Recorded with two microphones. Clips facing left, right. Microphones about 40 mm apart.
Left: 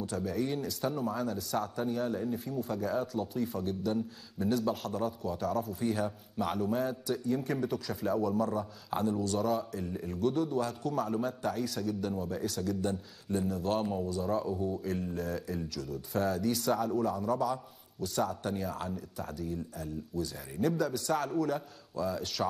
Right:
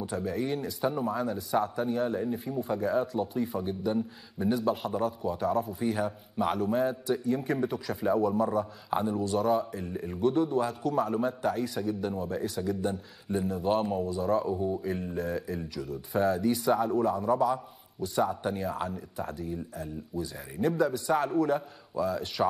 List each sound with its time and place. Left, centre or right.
0.0 s a man's voice: centre
12.5 s a man's voice: centre